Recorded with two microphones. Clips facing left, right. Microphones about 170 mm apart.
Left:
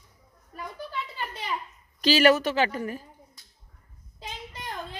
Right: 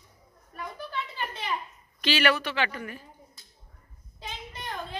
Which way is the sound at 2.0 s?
40° left (ahead or behind).